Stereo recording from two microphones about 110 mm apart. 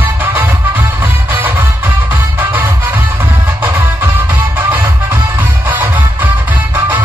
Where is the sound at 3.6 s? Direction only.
20° right (ahead or behind).